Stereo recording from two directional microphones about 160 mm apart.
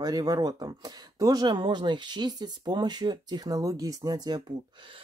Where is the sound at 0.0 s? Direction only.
25° right (ahead or behind).